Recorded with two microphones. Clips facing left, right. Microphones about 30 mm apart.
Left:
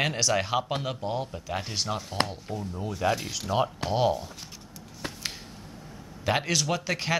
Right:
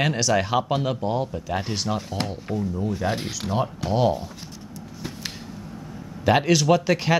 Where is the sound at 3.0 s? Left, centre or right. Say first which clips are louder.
Right 1 dB; centre.